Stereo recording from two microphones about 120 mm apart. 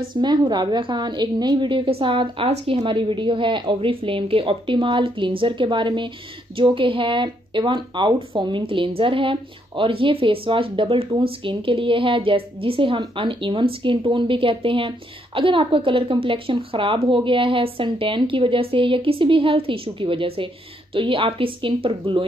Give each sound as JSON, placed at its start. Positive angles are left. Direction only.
{"t": 0.1, "sound": "a woman's voice", "side_deg": -35}